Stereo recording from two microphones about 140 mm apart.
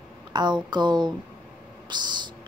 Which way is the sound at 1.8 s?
30° right (ahead or behind).